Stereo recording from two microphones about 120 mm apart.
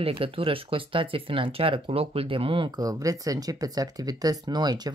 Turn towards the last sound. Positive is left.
turn(degrees=-35)  # may be behind; listen again after turning